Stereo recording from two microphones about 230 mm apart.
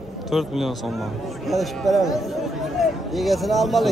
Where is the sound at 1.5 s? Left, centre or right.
Centre.